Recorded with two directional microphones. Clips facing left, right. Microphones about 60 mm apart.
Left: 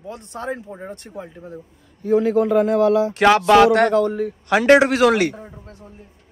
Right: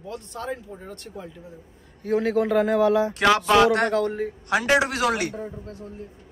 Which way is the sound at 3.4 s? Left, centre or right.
Left.